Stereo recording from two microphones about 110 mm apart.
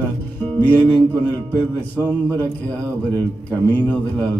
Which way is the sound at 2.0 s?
35° right (ahead or behind).